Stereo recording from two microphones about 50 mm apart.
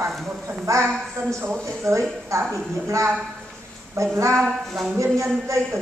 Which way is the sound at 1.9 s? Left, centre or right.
Right.